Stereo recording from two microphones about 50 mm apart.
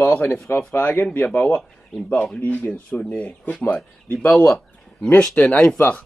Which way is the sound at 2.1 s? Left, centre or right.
Left.